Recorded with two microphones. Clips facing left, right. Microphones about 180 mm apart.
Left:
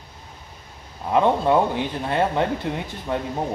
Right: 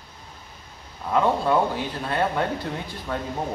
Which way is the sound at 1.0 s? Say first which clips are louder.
Left 3 dB; 20° left (ahead or behind).